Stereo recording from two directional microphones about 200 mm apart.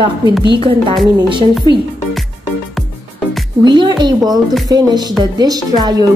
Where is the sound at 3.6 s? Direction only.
20° right (ahead or behind).